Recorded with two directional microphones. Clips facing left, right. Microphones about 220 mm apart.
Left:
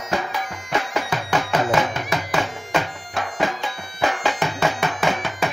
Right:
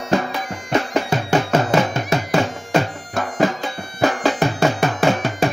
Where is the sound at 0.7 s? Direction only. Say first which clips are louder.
Right 6 dB; 35° right (ahead or behind).